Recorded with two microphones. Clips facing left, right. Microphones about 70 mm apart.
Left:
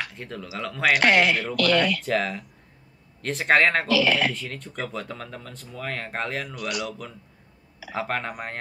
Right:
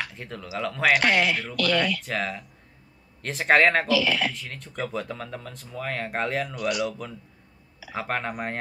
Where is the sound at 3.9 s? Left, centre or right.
Left.